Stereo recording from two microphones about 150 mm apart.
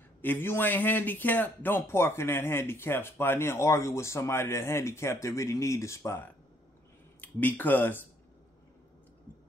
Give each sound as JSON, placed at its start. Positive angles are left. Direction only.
{"t": 0.2, "sound": "a man's voice", "side_deg": 15}